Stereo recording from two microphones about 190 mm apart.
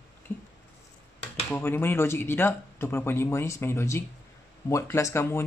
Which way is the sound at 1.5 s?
10° left (ahead or behind).